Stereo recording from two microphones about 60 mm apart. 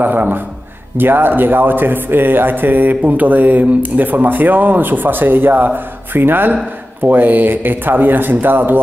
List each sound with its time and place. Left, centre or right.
0.0 s speech: right